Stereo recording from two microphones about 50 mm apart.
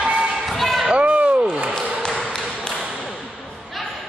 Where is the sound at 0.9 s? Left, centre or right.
Right.